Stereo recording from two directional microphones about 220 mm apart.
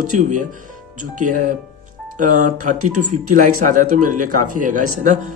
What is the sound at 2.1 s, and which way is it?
Speech, 35° right (ahead or behind).